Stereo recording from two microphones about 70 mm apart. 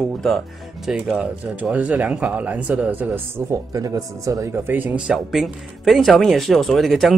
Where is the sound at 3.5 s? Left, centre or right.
Right.